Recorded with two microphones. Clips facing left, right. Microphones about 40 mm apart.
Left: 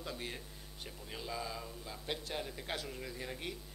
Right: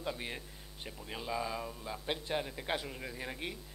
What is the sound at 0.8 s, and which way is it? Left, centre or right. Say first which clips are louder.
A man's voice: right 4 dB; centre.